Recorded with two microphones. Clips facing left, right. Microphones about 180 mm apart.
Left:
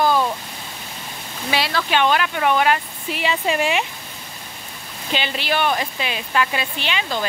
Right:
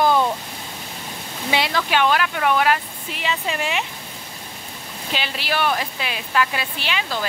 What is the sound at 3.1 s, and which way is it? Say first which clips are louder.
Speech: left 4 dB; 15° left (ahead or behind).